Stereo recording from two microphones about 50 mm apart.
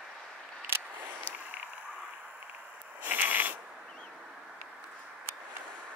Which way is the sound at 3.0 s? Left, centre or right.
Right.